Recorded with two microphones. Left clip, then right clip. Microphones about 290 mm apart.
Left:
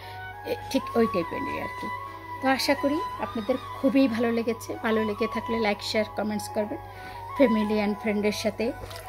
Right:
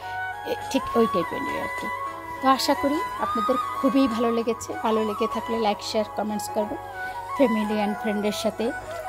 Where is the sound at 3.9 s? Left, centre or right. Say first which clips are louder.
Left 1 dB; centre.